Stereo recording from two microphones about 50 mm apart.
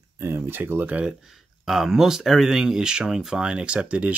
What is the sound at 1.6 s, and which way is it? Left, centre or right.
Speech, centre.